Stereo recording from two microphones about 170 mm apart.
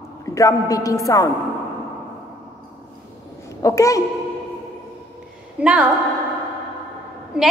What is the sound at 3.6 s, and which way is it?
Speech, 20° left (ahead or behind).